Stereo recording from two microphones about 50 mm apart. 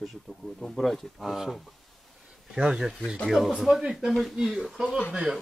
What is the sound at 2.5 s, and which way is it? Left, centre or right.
Speech, centre.